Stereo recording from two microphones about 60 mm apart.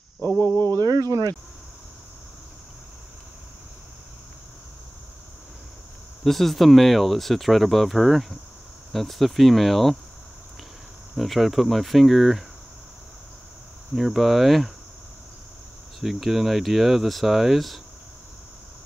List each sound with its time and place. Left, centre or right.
0.7 s speech: right
6.2 s speech: centre
11.1 s speech: centre
13.9 s speech: centre
16.0 s speech: centre